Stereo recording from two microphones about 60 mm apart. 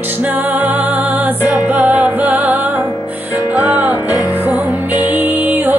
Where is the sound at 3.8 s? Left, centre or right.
Right.